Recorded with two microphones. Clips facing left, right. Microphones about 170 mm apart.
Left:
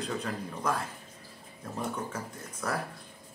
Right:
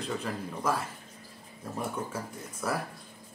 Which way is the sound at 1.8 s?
10° right (ahead or behind).